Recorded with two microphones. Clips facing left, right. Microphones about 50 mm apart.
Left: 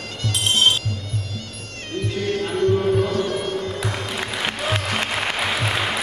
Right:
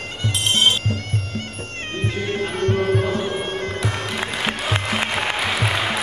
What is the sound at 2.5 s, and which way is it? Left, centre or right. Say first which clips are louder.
Music: left 3 dB; right.